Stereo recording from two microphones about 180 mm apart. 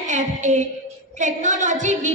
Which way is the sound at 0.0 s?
40° right (ahead or behind).